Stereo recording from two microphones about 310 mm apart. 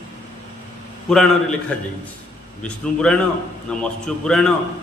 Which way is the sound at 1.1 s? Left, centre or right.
Centre.